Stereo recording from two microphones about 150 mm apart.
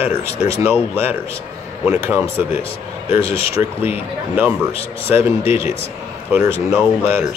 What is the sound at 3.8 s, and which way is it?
Speech, 10° right (ahead or behind).